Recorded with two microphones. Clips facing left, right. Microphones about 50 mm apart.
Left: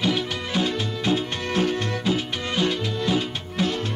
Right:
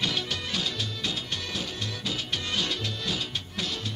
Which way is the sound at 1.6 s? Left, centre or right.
Left.